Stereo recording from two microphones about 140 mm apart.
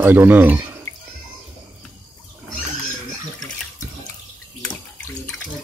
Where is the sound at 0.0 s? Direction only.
15° right (ahead or behind).